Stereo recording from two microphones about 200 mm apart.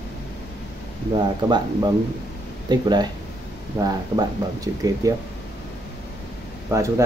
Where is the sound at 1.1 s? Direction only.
20° right (ahead or behind).